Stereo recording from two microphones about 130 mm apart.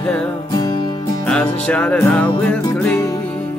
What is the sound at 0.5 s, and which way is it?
Music, 30° left (ahead or behind).